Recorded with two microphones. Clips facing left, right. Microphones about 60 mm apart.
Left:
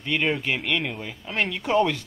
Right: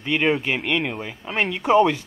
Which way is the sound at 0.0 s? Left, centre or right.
Centre.